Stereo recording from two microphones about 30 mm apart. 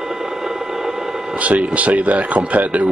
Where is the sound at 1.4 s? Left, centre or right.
Right.